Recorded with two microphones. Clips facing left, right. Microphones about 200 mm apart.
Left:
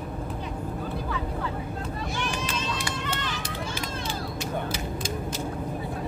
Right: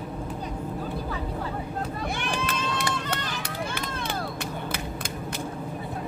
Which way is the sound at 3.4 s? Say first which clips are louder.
Right 1 dB; 60° right (ahead or behind).